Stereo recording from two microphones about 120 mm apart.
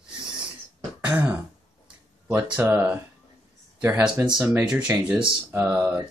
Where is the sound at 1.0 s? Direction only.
15° right (ahead or behind).